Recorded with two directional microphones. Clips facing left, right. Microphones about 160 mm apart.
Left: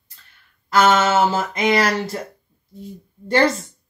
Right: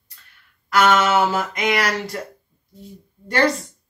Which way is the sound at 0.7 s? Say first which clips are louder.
Left 1 dB; 25° left (ahead or behind).